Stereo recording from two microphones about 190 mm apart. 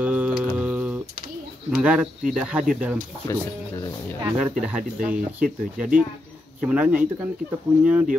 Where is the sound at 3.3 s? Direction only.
15° left (ahead or behind).